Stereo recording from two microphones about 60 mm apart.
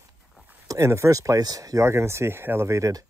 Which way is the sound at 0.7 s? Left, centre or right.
Right.